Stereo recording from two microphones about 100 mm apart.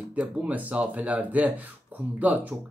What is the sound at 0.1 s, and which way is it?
Speech, 15° right (ahead or behind).